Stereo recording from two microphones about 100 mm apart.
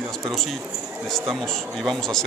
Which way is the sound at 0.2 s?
Centre (ahead or behind).